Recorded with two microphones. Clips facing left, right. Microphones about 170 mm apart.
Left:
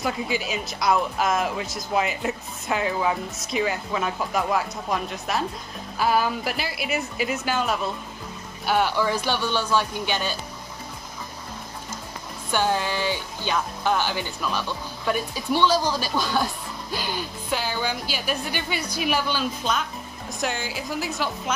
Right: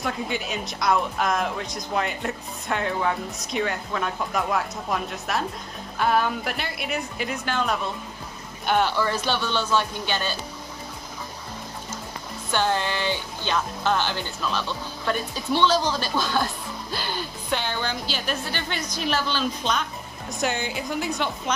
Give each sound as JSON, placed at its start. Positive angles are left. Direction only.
{"t": 0.0, "sound": "speech", "side_deg": 0}
{"t": 12.4, "sound": "speech", "side_deg": 10}